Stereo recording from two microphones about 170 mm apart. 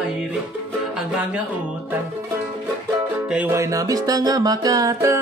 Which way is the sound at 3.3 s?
10° right (ahead or behind).